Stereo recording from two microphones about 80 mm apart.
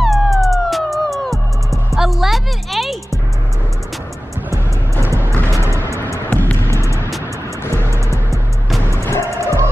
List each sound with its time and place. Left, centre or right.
0.0 s music: centre
4.5 s music: right
5.9 s music: left
6.3 s music: left
6.7 s music: left
7.7 s music: right
8.9 s music: left
9.2 s music: right